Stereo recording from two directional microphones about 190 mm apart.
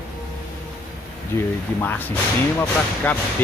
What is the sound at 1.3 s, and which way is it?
Speech, 15° left (ahead or behind).